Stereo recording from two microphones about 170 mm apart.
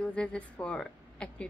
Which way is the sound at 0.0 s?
5° left (ahead or behind).